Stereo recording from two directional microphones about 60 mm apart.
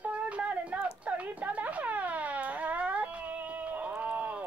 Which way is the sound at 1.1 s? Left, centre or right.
Right.